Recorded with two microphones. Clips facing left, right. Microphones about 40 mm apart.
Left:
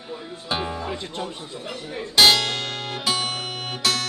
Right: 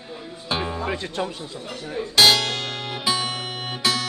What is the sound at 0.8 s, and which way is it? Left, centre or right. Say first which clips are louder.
Speech: right 3 dB; right.